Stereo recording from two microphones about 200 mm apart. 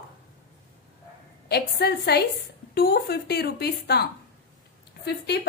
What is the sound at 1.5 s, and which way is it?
A woman's voice, 55° left (ahead or behind).